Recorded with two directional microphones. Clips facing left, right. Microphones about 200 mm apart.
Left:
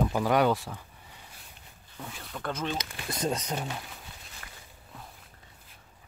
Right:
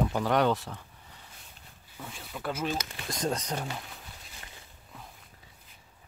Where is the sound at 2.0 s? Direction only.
5° right (ahead or behind).